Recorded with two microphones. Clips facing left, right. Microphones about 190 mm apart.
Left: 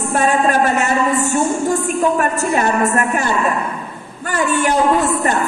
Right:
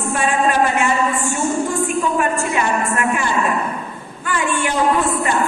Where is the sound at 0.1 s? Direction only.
45° left (ahead or behind).